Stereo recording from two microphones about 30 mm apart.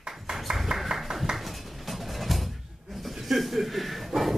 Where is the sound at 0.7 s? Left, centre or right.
Centre.